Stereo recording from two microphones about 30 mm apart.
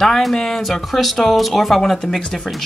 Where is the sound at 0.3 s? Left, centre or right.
Centre.